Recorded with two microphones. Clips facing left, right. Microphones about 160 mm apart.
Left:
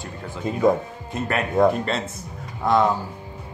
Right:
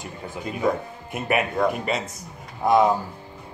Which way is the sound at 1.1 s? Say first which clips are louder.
Left 1 dB; 15° right (ahead or behind).